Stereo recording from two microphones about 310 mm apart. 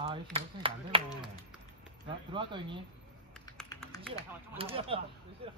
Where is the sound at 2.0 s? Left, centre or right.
Centre.